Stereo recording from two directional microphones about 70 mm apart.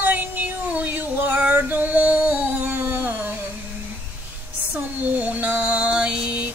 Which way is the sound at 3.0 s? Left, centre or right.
Right.